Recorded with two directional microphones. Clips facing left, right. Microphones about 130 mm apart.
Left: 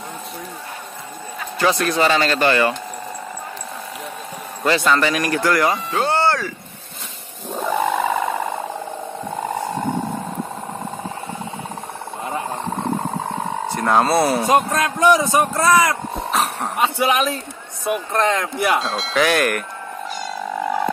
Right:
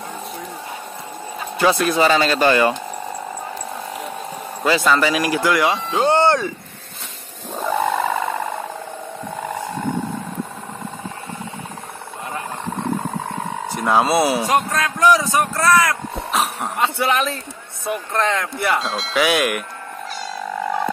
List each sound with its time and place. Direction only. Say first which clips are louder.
1.6 s speech: right 2 dB; 10° right (ahead or behind)
4.6 s speech: even; 5° right (ahead or behind); by 6.5 s 20° right (ahead or behind)
7.5 s wild animals: even; 5° left (ahead or behind)
13.7 s speech: even; centre (ahead or behind)
14.5 s speech: left 2 dB; 25° left (ahead or behind)
16.3 s a sound: even; centre (ahead or behind)
16.7 s speech: left 1 dB; 20° left (ahead or behind)
18.8 s speech: left 1 dB; centre (ahead or behind)